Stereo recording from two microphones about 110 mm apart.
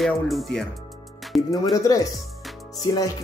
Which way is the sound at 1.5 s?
35° left (ahead or behind).